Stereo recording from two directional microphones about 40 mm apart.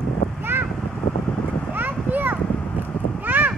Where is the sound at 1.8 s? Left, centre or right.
Right.